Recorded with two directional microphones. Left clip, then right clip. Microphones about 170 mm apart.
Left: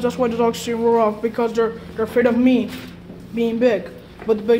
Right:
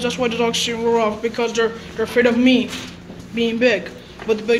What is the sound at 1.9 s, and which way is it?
Speech, 10° left (ahead or behind).